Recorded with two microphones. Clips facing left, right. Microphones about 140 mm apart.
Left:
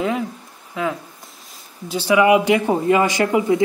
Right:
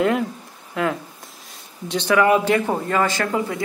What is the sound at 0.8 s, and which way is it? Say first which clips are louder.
A man's voice: right 1 dB; centre (ahead or behind).